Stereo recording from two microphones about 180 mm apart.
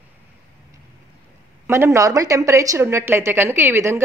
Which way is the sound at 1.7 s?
15° right (ahead or behind).